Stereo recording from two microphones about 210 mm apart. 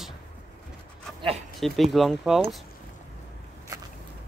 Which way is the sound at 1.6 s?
Centre (ahead or behind).